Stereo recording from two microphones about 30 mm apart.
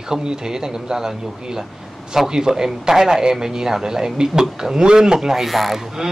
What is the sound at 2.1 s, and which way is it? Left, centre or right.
A man's voice, centre.